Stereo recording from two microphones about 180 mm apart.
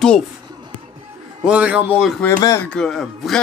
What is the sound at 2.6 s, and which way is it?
Speech, 5° left (ahead or behind).